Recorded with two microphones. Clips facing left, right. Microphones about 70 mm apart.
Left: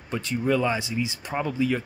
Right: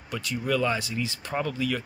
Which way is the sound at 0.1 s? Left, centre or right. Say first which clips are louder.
Left 3 dB; left.